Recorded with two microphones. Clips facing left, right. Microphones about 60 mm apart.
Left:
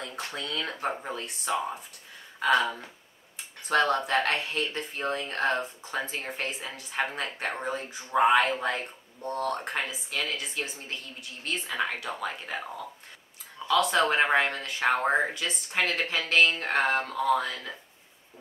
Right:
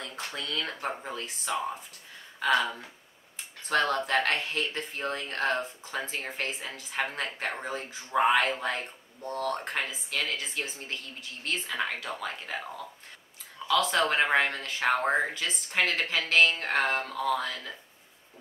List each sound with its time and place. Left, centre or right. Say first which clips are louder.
0.0 s speech: left 1 dB; centre
2.6 s speech: left 2 dB; centre
13.8 s speech: left 2 dB; centre